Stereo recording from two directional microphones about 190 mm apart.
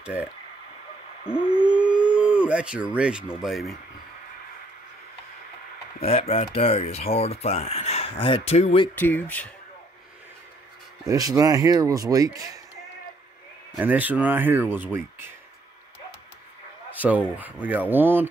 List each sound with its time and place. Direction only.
0.0 s speech: 5° right (ahead or behind)
1.2 s a sound: 30° left (ahead or behind)
1.6 s a sound: 5° right (ahead or behind)
2.1 s speech: 5° right (ahead or behind)
6.0 s speech: 30° left (ahead or behind)
8.9 s speech: 10° left (ahead or behind)
11.1 s speech: 20° right (ahead or behind)
13.7 s speech: 10° right (ahead or behind)
16.9 s speech: 10° right (ahead or behind)